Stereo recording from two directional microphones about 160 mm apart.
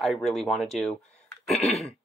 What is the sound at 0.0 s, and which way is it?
Speech, centre (ahead or behind).